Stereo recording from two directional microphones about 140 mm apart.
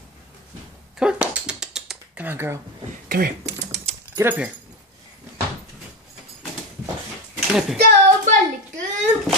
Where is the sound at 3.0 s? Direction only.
90° right.